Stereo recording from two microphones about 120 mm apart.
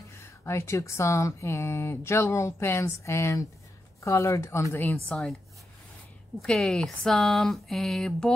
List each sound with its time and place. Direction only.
0.2 s speech: 20° left (ahead or behind)
4.9 s speech: 10° left (ahead or behind)
6.4 s speech: 5° left (ahead or behind)